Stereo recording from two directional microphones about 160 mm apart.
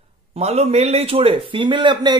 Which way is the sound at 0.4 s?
40° right (ahead or behind).